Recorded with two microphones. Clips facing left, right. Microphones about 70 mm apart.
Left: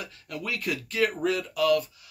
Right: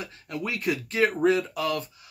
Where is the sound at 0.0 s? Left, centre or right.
Right.